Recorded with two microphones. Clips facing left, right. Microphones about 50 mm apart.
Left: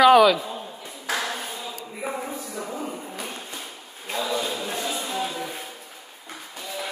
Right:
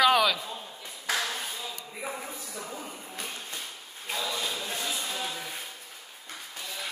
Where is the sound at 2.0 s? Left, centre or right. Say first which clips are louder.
Left 7 dB; left.